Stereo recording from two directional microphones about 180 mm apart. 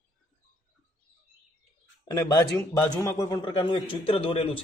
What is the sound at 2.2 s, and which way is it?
A man's voice, 20° left (ahead or behind).